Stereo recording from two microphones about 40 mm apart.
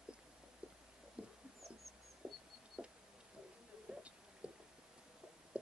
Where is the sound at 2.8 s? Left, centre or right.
Right.